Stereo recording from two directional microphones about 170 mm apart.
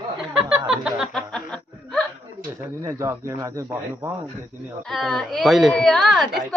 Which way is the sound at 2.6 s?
15° right (ahead or behind).